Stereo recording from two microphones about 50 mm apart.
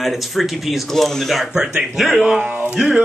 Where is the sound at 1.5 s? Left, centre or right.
Centre.